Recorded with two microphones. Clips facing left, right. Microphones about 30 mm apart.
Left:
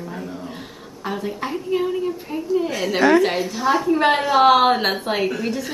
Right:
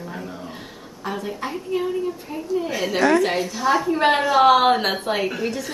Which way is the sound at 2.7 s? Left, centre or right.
Centre.